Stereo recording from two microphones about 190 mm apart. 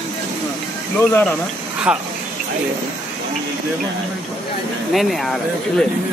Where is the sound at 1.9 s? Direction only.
5° right (ahead or behind).